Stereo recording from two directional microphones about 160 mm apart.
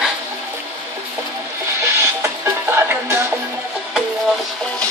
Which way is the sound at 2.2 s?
15° right (ahead or behind).